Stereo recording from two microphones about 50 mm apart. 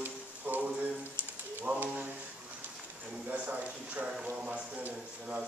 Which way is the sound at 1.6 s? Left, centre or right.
Right.